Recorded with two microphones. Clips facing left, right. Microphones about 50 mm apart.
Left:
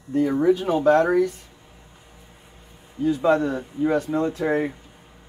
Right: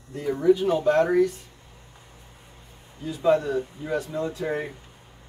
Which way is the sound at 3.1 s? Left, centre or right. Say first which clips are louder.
Left 2 dB; left.